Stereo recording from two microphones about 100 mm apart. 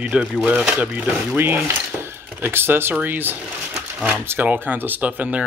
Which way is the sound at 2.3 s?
20° right (ahead or behind).